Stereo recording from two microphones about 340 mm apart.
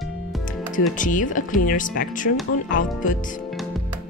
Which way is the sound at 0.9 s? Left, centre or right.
Left.